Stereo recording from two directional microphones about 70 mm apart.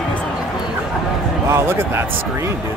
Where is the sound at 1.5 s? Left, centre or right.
Right.